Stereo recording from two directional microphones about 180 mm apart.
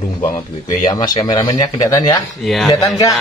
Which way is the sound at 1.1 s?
25° left (ahead or behind).